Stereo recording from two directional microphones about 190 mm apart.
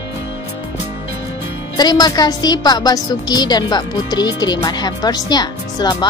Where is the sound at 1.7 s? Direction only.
20° left (ahead or behind).